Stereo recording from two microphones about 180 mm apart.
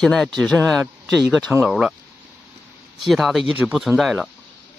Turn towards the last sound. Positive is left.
turn(degrees=-5)  # may be behind; listen again after turning